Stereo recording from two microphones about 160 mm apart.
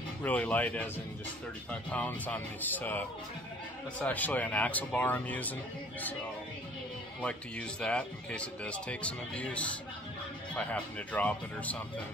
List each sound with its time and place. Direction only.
0.2 s speech: 10° left (ahead or behind)
7.2 s speech: 5° left (ahead or behind)